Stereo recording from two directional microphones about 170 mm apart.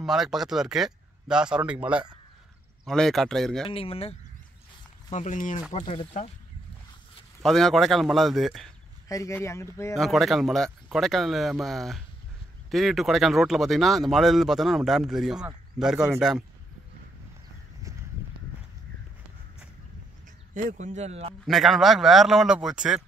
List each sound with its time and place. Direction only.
0.0 s speech: centre (ahead or behind)
3.6 s speech: 35° left (ahead or behind)
5.1 s speech: 50° left (ahead or behind)
7.4 s speech: centre (ahead or behind)
9.1 s speech: 15° left (ahead or behind)
9.9 s speech: centre (ahead or behind)
20.5 s speech: 45° right (ahead or behind)
21.5 s speech: centre (ahead or behind)